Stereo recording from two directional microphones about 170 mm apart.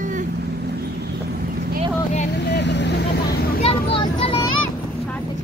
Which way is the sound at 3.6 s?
35° left (ahead or behind).